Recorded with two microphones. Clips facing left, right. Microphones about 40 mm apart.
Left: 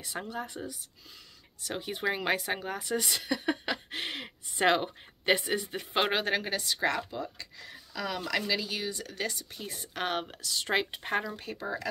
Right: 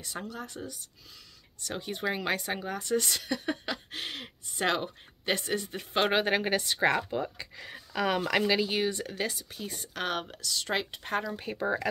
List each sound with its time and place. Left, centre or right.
0.0 s speech: centre
0.3 s speech: left
1.6 s speech: centre
6.0 s a woman's voice: centre
6.5 s a woman's voice: right
9.1 s speech: centre
9.5 s speech: centre
11.5 s speech: right